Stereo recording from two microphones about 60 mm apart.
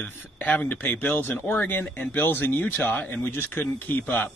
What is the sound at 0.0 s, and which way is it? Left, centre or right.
Speech, left.